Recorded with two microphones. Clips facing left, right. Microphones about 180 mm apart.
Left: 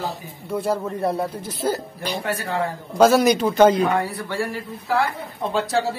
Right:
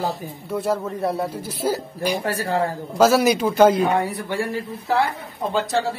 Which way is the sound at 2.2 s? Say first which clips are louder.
Left 1 dB; 35° right (ahead or behind).